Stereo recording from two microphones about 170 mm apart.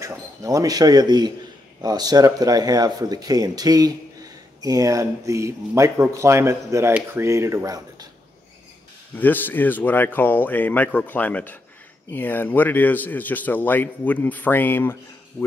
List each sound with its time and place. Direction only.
0.0 s speech: 20° right (ahead or behind)
9.1 s speech: 10° left (ahead or behind)